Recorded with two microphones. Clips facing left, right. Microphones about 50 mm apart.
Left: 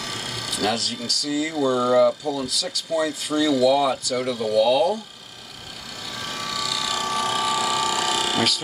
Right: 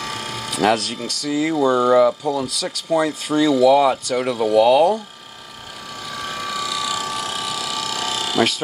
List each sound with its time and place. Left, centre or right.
0.0 s speech: right
2.2 s speech: right
6.0 s a sound: centre